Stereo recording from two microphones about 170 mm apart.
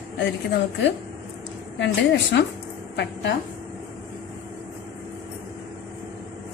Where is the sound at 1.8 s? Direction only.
90° left.